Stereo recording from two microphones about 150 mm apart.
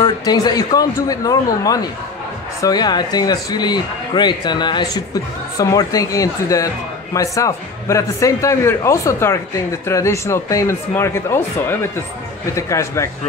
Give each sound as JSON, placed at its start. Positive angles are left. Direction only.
{"t": 0.0, "sound": "speech", "side_deg": 30}